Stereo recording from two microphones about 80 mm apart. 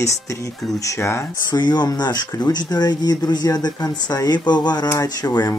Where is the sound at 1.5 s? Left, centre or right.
Left.